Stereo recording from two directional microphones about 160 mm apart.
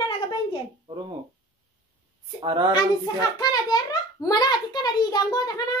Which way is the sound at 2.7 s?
25° left (ahead or behind).